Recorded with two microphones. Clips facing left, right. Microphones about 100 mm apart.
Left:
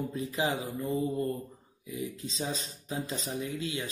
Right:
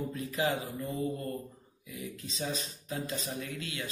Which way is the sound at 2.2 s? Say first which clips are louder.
Left 1 dB; 30° left (ahead or behind).